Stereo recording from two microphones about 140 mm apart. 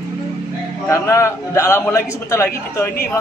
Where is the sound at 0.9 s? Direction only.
20° left (ahead or behind).